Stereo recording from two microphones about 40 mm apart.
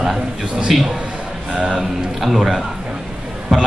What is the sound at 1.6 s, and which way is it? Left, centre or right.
Speech, right.